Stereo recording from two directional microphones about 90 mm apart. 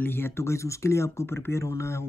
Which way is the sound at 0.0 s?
25° left (ahead or behind).